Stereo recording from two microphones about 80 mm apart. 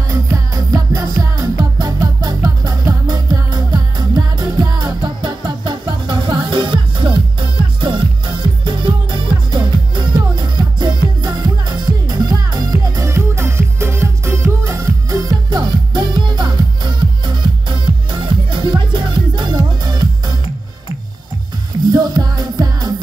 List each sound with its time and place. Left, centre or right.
0.1 s music: right
13.0 s music: right
15.5 s music: right
21.8 s music: right